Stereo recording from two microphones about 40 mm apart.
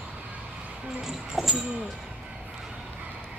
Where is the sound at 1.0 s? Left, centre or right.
Centre.